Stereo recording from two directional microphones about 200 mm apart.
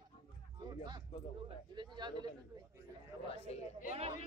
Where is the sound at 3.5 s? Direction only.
35° left (ahead or behind).